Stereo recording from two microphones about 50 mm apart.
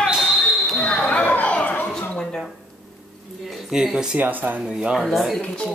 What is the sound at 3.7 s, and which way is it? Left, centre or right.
Speech, centre.